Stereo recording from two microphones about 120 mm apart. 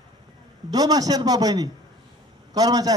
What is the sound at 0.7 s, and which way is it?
A man's voice, 30° right (ahead or behind).